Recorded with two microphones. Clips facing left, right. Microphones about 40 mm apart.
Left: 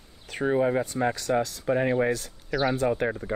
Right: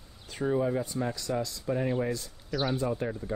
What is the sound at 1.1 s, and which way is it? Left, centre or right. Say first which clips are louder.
Speech: left 6 dB; left.